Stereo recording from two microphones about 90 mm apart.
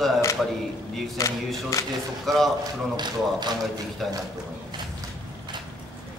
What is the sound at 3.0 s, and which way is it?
Speech, 55° right (ahead or behind).